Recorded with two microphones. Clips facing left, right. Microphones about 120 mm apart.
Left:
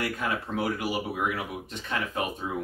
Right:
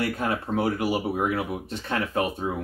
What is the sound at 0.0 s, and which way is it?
Speech, 35° right (ahead or behind).